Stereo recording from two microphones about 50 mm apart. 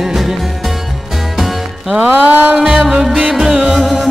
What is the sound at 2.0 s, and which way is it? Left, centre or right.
Music, right.